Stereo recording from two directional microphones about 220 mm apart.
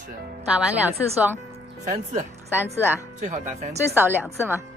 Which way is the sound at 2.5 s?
10° right (ahead or behind).